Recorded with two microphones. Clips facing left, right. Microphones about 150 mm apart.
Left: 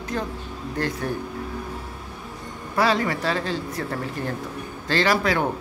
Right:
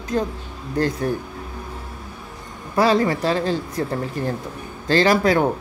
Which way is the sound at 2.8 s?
40° right (ahead or behind).